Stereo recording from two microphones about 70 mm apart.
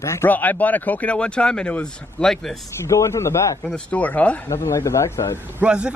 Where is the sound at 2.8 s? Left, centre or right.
Left.